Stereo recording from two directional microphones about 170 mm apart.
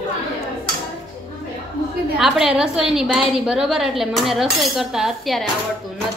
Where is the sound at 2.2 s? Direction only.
Centre (ahead or behind).